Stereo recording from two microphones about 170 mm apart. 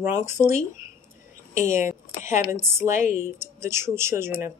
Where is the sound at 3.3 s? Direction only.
15° right (ahead or behind).